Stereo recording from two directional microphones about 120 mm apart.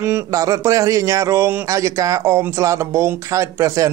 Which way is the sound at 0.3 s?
30° right (ahead or behind).